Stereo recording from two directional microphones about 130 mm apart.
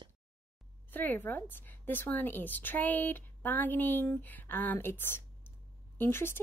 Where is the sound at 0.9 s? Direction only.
15° left (ahead or behind).